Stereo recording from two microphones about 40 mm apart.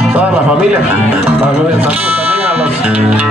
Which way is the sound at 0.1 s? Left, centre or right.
Right.